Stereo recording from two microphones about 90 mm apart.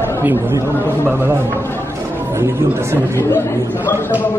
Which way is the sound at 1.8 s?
30° right (ahead or behind).